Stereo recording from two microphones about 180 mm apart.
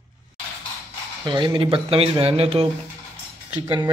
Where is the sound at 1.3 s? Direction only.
25° right (ahead or behind).